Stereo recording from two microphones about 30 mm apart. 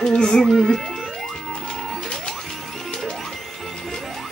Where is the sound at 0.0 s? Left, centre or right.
Left.